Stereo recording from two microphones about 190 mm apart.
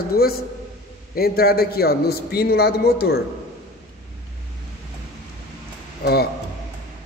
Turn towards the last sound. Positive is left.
turn(degrees=50)  # may be behind; listen again after turning